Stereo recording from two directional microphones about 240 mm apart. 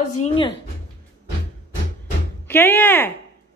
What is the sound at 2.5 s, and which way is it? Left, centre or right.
Speech, centre.